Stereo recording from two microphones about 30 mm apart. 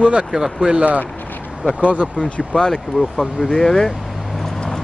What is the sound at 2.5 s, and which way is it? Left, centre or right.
Speech, left.